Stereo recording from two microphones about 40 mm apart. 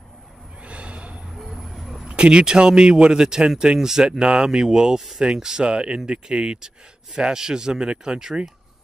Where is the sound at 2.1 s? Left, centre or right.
Right.